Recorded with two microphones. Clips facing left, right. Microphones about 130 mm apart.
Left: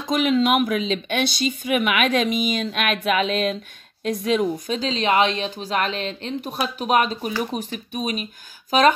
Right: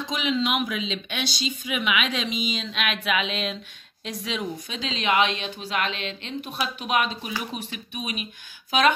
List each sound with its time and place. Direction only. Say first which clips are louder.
0.0 s a woman's voice: left 6 dB; 50° left (ahead or behind)